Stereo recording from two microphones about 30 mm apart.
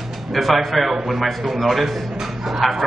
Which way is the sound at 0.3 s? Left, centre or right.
Centre.